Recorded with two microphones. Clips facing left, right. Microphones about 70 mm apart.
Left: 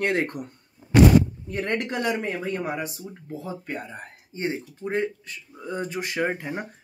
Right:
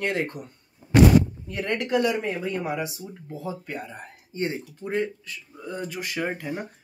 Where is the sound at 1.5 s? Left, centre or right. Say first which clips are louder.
Right 2 dB; left.